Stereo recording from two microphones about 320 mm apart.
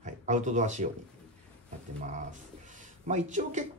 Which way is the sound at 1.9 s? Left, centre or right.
Right.